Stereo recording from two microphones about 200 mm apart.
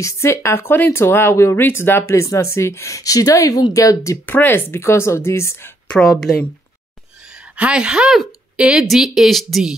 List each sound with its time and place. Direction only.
0.0 s speech: 15° left (ahead or behind)
7.5 s speech: 5° right (ahead or behind)